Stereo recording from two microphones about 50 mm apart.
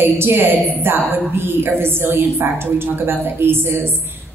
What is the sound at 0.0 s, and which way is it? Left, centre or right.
A woman's voice, right.